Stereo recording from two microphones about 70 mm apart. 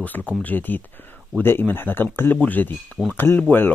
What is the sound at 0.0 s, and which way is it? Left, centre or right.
Speech, left.